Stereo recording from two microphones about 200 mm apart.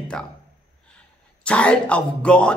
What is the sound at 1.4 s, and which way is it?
Speech, 5° left (ahead or behind).